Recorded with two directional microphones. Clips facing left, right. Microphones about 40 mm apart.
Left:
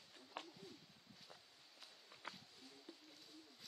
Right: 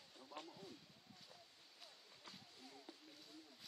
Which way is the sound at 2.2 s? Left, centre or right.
Left.